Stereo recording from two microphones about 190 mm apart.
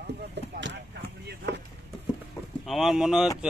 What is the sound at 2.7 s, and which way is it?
Speech, centre (ahead or behind).